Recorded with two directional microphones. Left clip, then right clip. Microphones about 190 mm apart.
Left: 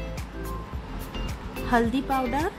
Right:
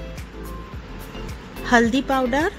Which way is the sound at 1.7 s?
15° right (ahead or behind).